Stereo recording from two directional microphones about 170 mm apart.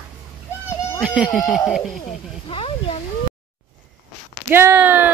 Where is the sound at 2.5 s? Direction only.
30° left (ahead or behind).